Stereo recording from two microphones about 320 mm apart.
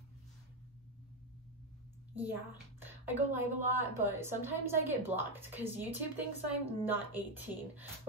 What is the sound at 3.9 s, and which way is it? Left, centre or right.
A woman's voice, centre.